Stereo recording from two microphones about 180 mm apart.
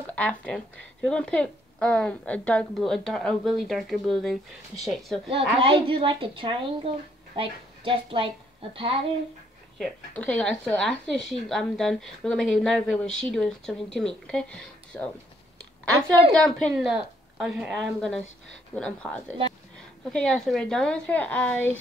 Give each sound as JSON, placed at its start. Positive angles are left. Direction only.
{"t": 0.0, "sound": "a woman's voice", "side_deg": 5}
{"t": 5.6, "sound": "a woman's voice", "side_deg": -30}
{"t": 9.8, "sound": "a woman's voice", "side_deg": 5}
{"t": 16.3, "sound": "a woman's voice", "side_deg": 0}